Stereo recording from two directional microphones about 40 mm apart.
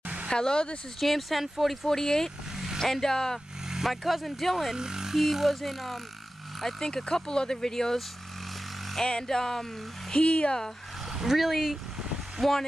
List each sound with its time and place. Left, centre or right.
0.3 s speech: left
0.9 s speech: centre
1.9 s speech: centre
2.5 s vehicle: centre
2.8 s speech: centre
3.6 s vehicle: centre
3.9 s speech: centre
4.7 s speech: centre
5.2 s speech: centre
9.0 s speech: centre
10.1 s speech: left
11.1 s speech: centre